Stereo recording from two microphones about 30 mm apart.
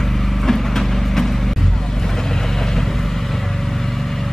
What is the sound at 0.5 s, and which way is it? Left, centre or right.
Vehicle, centre.